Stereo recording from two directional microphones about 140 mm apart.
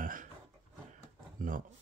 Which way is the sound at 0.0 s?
70° right (ahead or behind).